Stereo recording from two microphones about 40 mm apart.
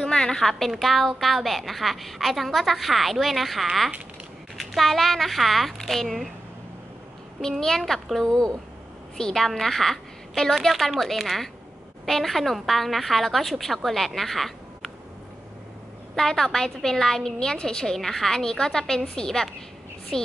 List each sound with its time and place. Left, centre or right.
0.0 s a sound: centre
0.4 s a woman's voice: centre
7.6 s a woman's voice: centre
16.2 s a woman's voice: centre